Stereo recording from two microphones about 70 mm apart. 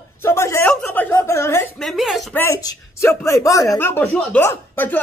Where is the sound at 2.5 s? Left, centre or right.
Left.